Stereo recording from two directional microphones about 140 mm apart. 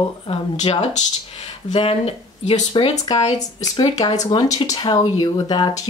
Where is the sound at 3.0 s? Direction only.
30° left (ahead or behind).